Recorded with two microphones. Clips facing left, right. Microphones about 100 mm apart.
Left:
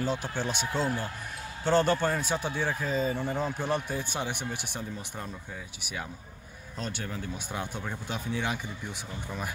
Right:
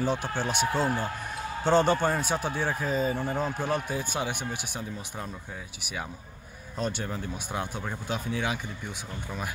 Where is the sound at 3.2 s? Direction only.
45° right (ahead or behind).